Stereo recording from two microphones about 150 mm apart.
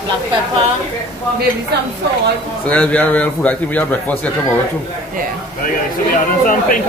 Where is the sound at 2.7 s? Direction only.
10° left (ahead or behind).